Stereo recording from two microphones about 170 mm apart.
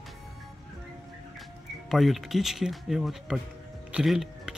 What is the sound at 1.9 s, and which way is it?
Speech, centre (ahead or behind).